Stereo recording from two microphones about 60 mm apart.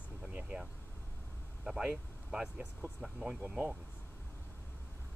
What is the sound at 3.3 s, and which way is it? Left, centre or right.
Speech, right.